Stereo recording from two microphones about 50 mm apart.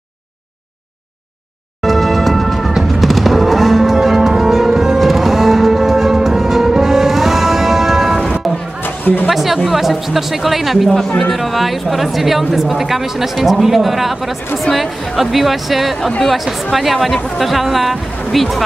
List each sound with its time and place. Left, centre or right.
1.8 s music: centre
8.8 s music: left
9.3 s a woman's voice: centre